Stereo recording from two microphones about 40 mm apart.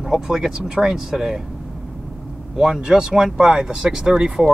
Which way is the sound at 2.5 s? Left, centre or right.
Centre.